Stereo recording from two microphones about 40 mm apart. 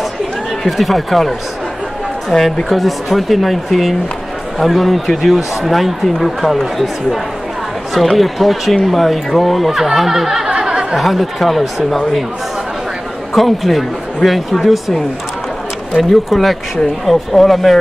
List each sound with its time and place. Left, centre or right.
0.7 s speech: centre
10.6 s a sound: centre
11.0 s speech: centre
13.3 s speech: centre
16.0 s speech: centre